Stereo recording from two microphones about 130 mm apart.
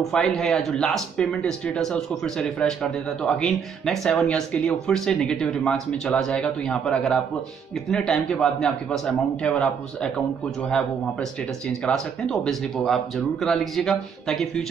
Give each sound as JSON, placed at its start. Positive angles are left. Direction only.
{"t": 0.1, "sound": "speech", "side_deg": 5}
{"t": 11.8, "sound": "speech", "side_deg": 5}